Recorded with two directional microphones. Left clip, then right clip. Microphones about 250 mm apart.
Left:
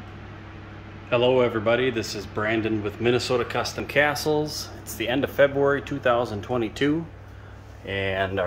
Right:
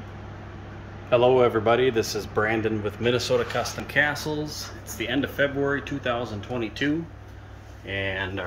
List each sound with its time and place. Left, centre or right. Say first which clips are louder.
1.1 s speech: right 2 dB; centre